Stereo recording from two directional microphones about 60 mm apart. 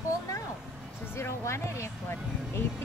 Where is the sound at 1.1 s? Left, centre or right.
Left.